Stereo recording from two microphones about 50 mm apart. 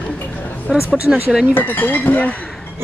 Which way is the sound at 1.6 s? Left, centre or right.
Left.